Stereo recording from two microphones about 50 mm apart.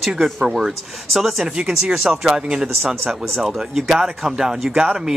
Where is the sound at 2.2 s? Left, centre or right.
Centre.